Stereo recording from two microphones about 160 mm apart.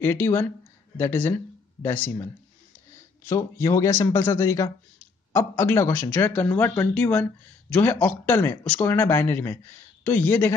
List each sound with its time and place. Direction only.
0.0 s speech: 15° left (ahead or behind)
3.3 s speech: 15° left (ahead or behind)